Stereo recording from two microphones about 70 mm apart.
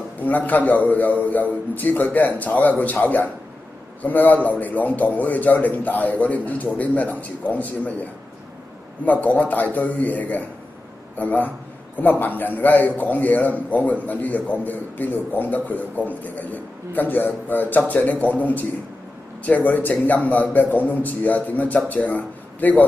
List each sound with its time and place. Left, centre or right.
0.2 s a man's voice: left
9.0 s a man's voice: left